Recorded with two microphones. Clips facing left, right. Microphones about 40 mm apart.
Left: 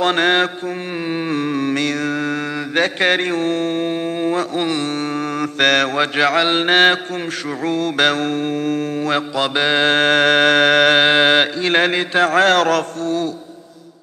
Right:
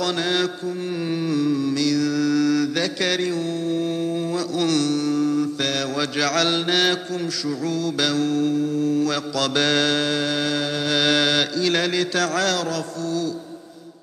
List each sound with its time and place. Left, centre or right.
0.0 s music: left
1.0 s mantra: left
9.9 s music: left
11.0 s mantra: left